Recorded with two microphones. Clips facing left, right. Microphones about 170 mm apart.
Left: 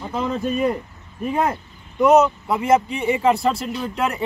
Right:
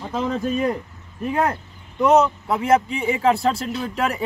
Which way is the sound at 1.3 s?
10° left (ahead or behind).